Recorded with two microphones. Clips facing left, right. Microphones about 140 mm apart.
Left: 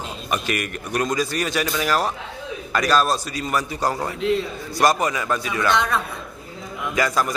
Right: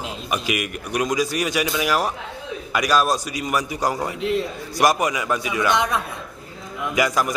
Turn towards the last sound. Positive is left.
turn(degrees=-15)  # may be behind; listen again after turning